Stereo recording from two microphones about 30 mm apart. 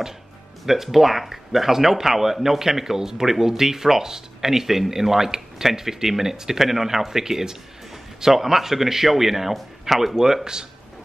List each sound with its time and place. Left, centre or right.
0.7 s speech: centre